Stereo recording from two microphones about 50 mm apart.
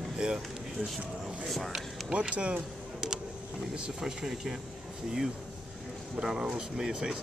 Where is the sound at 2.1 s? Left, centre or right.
Right.